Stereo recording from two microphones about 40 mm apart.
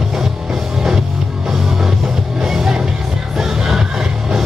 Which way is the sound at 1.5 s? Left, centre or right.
Centre.